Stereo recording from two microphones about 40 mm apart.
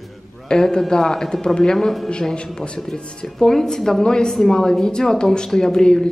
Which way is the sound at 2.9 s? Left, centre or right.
Centre.